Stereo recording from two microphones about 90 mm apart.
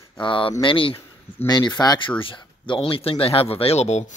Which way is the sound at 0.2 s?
65° left (ahead or behind).